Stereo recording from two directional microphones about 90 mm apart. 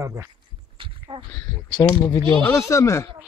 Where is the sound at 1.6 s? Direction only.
55° left (ahead or behind).